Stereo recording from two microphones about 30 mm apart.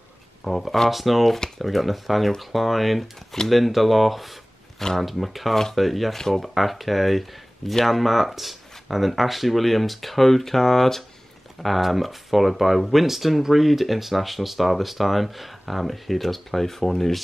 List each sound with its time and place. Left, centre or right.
0.4 s speech: centre
4.7 s speech: centre
5.0 s speech: centre
6.1 s speech: centre
6.4 s speech: centre
11.6 s speech: centre